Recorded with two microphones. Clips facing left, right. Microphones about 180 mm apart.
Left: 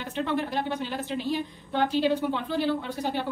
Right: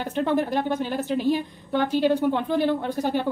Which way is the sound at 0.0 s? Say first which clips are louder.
Right 5 dB; 45° right (ahead or behind).